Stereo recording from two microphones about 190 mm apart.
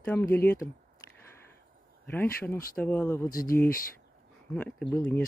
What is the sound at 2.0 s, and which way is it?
Speech, 10° left (ahead or behind).